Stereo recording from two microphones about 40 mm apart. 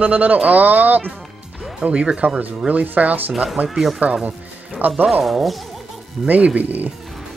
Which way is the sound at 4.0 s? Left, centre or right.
Right.